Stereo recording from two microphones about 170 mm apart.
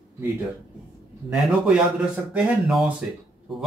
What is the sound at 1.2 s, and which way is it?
Speech, 5° right (ahead or behind).